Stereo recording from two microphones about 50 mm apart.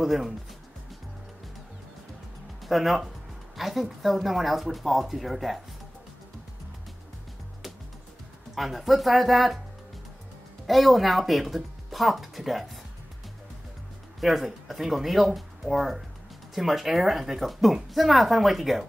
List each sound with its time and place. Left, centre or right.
0.0 s speech: centre
2.6 s speech: centre
8.5 s speech: centre
10.7 s speech: centre
14.2 s speech: centre